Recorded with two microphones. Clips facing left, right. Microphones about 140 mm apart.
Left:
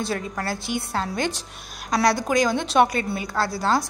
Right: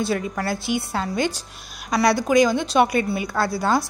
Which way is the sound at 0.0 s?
45° left (ahead or behind).